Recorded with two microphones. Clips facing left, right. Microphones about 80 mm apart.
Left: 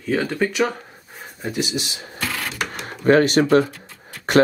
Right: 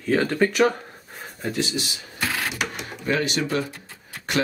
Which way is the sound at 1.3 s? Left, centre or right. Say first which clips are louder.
Left 1 dB; centre.